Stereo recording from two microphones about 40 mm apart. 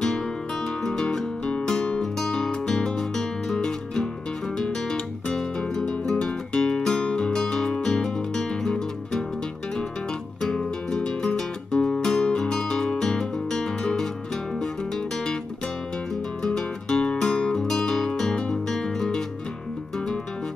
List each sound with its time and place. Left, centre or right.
0.0 s music: centre
4.6 s guitar: centre
5.3 s music: centre
10.4 s music: centre
16.4 s music: centre